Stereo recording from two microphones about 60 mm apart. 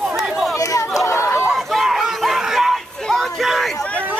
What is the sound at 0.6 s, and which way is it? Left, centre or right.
Chatter, left.